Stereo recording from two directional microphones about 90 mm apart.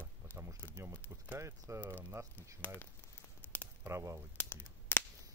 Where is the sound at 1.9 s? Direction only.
20° right (ahead or behind).